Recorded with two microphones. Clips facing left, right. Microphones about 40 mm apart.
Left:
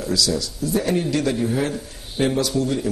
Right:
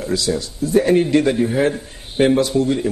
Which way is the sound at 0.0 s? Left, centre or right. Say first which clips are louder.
Right 2 dB; right.